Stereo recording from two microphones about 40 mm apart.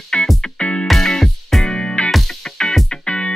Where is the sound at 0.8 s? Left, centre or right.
Centre.